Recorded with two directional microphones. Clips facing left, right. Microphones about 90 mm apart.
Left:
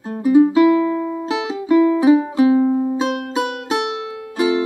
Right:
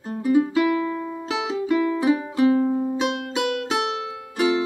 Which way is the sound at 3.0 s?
35° left (ahead or behind).